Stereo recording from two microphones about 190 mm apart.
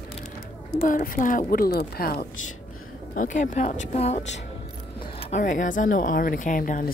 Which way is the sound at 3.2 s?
40° left (ahead or behind).